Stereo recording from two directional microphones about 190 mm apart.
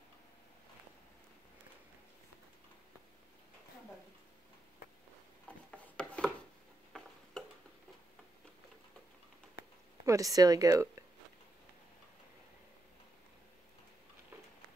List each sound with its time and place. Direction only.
5.7 s rub: 5° left (ahead or behind)
10.0 s speech: 15° right (ahead or behind)
14.3 s a sound: 15° right (ahead or behind)